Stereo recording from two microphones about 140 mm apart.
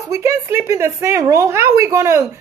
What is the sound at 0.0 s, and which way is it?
A woman's voice, 20° right (ahead or behind).